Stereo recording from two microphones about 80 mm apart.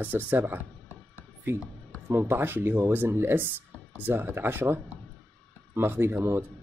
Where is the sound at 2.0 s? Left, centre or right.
Right.